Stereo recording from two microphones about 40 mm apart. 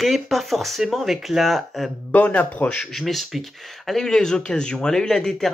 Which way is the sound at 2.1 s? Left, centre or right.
Left.